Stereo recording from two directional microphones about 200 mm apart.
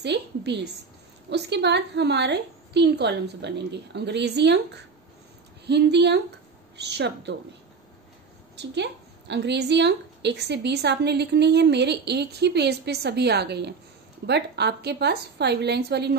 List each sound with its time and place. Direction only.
0.0 s a woman's voice: 60° right (ahead or behind)
5.7 s a woman's voice: 60° right (ahead or behind)
8.5 s a woman's voice: 60° right (ahead or behind)